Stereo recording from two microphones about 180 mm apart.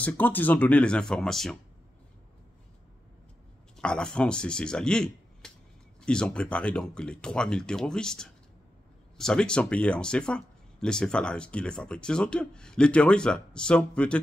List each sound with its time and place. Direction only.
0.0 s speech: 10° left (ahead or behind)
3.7 s speech: 5° left (ahead or behind)